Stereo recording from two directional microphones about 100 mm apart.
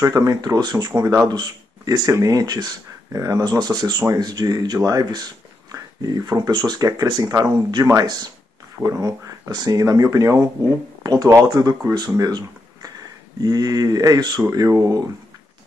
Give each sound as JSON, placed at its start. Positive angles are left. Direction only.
{"t": 0.0, "sound": "speech", "side_deg": -35}